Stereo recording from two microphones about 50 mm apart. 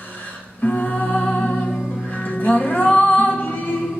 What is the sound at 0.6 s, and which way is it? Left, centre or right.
Music, left.